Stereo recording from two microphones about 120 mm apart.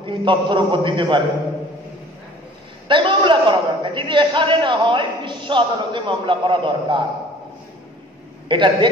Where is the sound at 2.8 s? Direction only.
45° right (ahead or behind).